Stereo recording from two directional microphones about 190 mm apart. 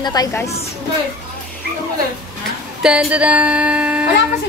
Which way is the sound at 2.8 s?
5° right (ahead or behind).